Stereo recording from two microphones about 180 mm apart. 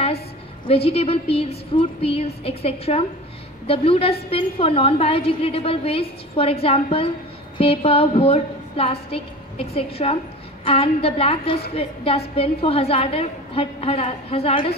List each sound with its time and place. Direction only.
0.7 s a woman's voice: 35° left (ahead or behind)